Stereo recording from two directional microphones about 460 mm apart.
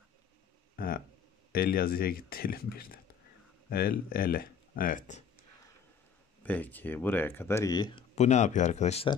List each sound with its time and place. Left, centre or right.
0.7 s a sound: centre
1.5 s speech: centre
6.4 s speech: centre